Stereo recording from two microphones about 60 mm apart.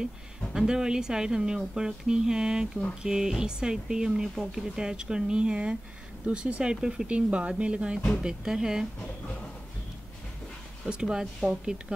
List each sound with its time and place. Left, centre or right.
0.5 s speech: centre
10.9 s speech: centre